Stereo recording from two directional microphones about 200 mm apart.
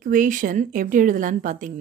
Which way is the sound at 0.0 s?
40° right (ahead or behind).